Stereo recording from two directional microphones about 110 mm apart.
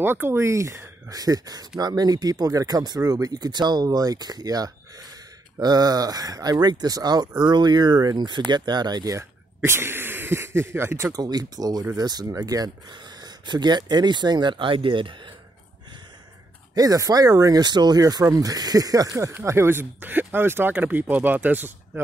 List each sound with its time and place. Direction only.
0.0 s speech: 20° right (ahead or behind)
11.1 s speech: 35° right (ahead or behind)
16.7 s speech: 35° right (ahead or behind); by 22.0 s 20° right (ahead or behind)